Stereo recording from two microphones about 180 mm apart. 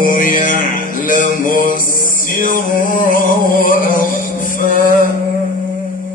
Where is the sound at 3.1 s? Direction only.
50° left (ahead or behind).